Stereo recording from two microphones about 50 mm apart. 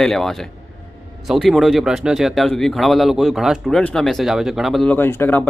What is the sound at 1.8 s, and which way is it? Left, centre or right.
Speech, centre.